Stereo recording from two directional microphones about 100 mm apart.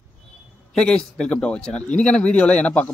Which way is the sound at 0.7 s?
5° left (ahead or behind).